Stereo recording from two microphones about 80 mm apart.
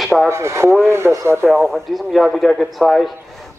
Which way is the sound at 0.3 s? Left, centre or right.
Right.